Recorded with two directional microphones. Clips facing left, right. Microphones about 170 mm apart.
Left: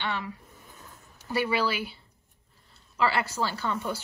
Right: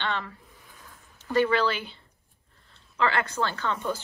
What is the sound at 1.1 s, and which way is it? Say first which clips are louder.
Speech: right 4 dB; 10° left (ahead or behind).